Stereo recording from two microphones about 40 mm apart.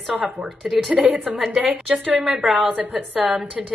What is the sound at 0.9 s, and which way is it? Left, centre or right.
Speech, right.